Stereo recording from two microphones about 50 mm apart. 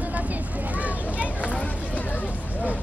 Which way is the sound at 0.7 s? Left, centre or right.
Right.